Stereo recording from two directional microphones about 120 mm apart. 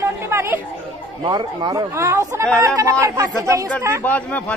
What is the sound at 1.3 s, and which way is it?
Speech, 35° right (ahead or behind).